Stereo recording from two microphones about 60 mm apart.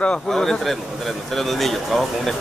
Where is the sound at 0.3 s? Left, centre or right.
Centre.